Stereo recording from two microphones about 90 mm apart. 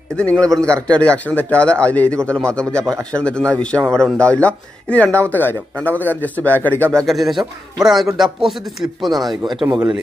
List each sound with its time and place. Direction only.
0.1 s speech: 15° left (ahead or behind)
0.6 s speech: 35° right (ahead or behind)
0.9 s speech: 15° left (ahead or behind)
7.1 s speech: centre (ahead or behind)